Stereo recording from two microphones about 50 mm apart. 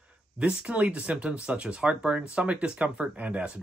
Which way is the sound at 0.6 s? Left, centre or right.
Right.